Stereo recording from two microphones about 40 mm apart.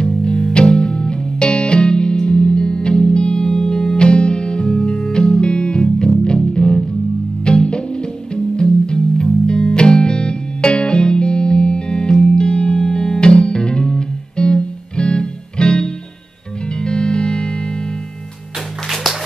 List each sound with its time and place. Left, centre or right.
0.0 s music: centre